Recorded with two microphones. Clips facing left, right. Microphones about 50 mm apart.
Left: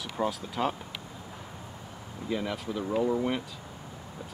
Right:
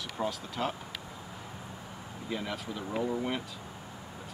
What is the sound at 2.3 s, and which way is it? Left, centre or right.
Speech, centre.